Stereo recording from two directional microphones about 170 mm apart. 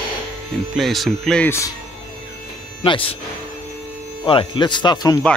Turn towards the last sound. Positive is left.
turn(degrees=25)  # may be behind; listen again after turning